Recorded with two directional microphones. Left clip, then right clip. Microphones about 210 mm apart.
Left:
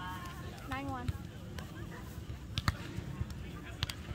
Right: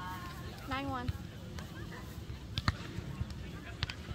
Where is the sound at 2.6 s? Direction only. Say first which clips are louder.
Even; 5° right (ahead or behind).